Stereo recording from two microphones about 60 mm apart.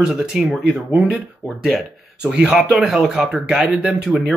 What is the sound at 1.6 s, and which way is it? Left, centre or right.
Speech, centre.